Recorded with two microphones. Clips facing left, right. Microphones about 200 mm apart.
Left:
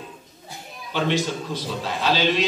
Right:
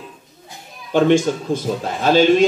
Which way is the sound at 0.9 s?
50° right (ahead or behind).